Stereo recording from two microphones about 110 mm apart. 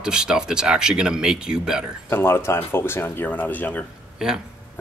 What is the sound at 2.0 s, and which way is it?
Speech, 20° left (ahead or behind).